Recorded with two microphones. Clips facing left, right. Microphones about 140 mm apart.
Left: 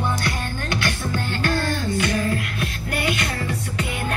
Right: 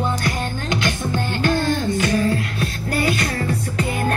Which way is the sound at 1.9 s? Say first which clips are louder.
Right 3 dB; 35° right (ahead or behind).